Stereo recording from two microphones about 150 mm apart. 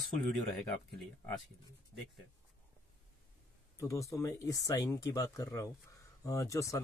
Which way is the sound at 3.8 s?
20° left (ahead or behind).